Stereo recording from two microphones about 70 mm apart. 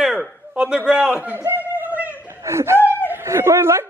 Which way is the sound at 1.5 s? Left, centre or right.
Right.